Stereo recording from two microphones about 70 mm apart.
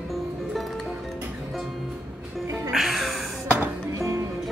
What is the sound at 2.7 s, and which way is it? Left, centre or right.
Music, centre.